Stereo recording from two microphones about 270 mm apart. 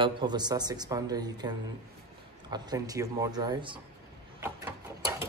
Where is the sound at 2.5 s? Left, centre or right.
Centre.